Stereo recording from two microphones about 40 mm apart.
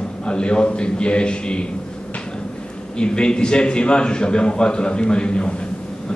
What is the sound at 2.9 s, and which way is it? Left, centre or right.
A man's voice, left.